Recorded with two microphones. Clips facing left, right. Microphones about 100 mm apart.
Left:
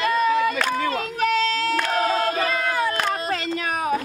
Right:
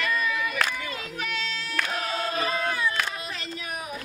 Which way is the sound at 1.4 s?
90° left.